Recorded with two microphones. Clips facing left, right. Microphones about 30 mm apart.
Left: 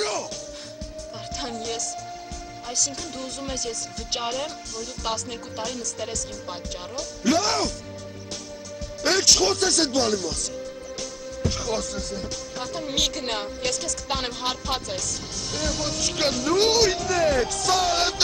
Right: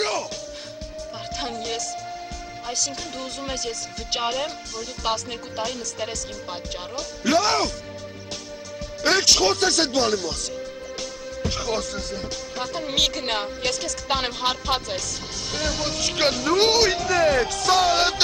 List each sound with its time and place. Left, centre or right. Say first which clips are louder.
0.0 s music: right 2 dB; centre
1.4 s speech: right 1 dB; centre
9.0 s speech: right 2 dB; centre